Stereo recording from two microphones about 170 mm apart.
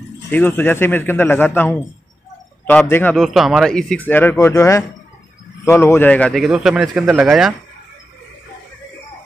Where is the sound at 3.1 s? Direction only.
Centre (ahead or behind).